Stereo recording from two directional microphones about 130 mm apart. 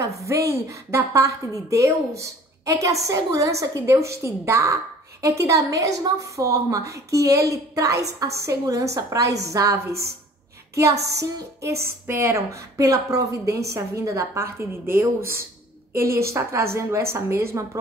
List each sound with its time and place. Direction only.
0.2 s a woman's voice: 25° right (ahead or behind)